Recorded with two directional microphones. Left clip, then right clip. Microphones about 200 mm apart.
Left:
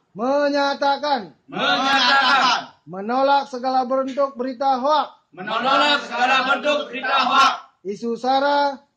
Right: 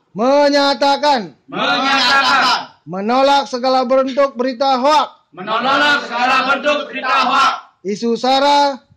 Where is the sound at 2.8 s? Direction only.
45° right (ahead or behind).